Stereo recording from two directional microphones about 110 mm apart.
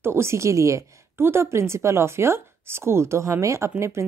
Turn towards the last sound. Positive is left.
turn(degrees=-25)  # may be behind; listen again after turning